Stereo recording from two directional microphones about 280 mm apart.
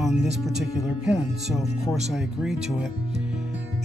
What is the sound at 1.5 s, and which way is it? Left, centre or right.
Music, centre.